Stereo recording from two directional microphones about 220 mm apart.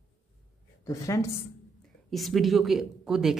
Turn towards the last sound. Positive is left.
turn(degrees=0)  # may be behind; listen again after turning